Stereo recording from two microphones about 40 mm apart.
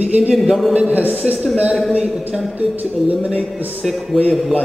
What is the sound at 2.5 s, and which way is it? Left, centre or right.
Speech, right.